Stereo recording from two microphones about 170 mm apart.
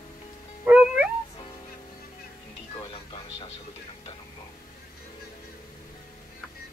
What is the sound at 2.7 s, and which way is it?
Music, 30° left (ahead or behind).